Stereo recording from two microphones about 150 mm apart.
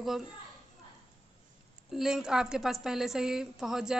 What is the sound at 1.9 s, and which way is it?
A woman's voice, 5° right (ahead or behind).